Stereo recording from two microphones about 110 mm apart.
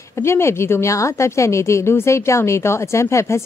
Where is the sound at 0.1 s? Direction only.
25° left (ahead or behind).